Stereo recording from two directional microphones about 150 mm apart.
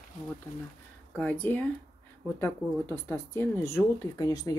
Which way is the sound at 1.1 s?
10° left (ahead or behind).